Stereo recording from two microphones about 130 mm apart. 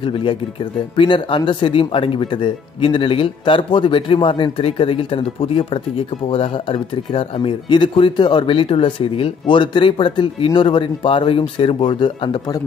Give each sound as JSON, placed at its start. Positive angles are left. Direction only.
{"t": 0.0, "sound": "speech", "side_deg": 40}